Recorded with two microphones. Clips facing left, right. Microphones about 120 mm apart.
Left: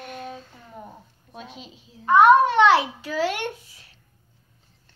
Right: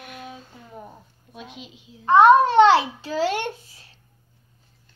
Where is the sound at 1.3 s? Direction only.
35° left (ahead or behind).